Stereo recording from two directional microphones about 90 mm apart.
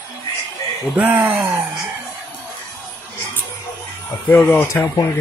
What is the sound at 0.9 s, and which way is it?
Mantra, 20° right (ahead or behind).